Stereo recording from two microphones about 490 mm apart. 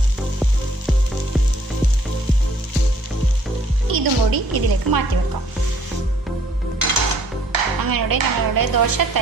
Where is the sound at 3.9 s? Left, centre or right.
Right.